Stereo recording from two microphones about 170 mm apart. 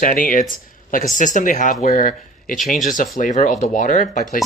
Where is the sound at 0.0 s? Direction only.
55° left (ahead or behind).